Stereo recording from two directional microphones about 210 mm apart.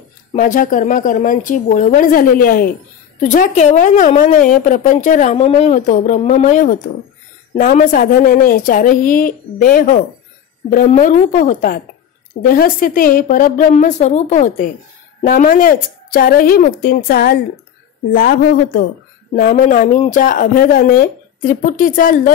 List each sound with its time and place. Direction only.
0.3 s a woman's voice: 40° left (ahead or behind)
19.3 s a woman's voice: 40° left (ahead or behind)